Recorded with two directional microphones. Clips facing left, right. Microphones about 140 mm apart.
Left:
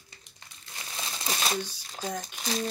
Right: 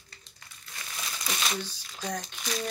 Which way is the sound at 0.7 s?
30° left (ahead or behind).